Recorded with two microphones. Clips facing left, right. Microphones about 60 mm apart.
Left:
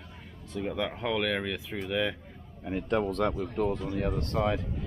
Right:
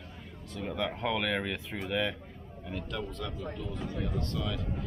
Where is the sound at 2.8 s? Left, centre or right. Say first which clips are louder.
Left 13 dB; left.